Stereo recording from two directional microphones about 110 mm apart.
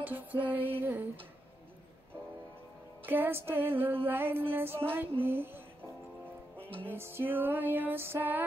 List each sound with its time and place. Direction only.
0.0 s music: 15° right (ahead or behind)
0.6 s a sound: 55° right (ahead or behind)
3.1 s music: 20° right (ahead or behind)
6.9 s music: 20° right (ahead or behind)